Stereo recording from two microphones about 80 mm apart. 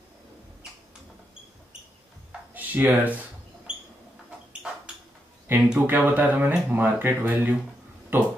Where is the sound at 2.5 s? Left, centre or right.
Right.